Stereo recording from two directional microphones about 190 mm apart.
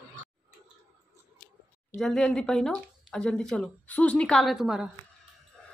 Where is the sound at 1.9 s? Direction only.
Centre (ahead or behind).